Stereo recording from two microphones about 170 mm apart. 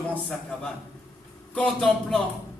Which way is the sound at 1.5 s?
5° left (ahead or behind).